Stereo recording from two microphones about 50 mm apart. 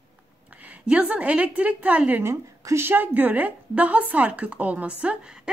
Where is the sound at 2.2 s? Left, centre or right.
Right.